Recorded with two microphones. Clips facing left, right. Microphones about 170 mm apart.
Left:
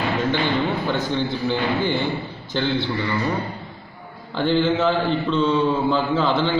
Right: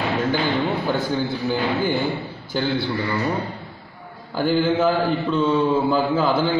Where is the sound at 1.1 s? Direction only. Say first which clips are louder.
Even; 5° right (ahead or behind).